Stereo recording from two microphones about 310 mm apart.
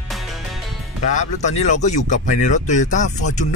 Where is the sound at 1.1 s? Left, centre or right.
Left.